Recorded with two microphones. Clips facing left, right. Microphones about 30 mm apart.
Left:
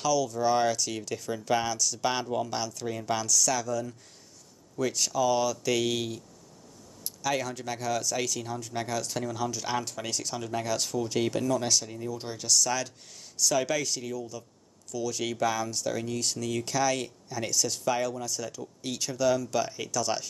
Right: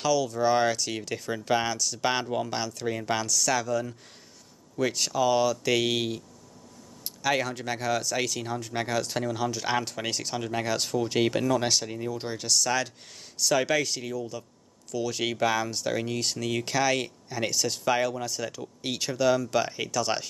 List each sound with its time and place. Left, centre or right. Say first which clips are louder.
0.0 s speech: right 2 dB; centre; by 12.2 s right
12.2 s speech: left 1 dB; right